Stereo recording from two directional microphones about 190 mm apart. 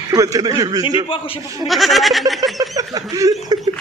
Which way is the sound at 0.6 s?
20° right (ahead or behind).